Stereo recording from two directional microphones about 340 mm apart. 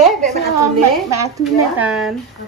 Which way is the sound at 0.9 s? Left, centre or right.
Centre.